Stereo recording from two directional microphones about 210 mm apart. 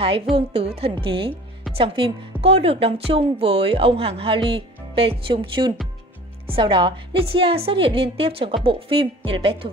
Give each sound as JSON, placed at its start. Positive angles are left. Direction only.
{"t": 0.5, "sound": "a woman's voice", "side_deg": -30}